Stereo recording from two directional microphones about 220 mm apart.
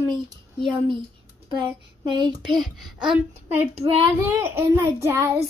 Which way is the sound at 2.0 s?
20° right (ahead or behind).